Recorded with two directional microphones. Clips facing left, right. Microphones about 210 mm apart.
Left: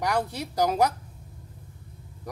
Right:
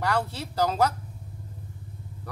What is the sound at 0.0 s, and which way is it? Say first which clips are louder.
Speech: left 1 dB; 15° left (ahead or behind).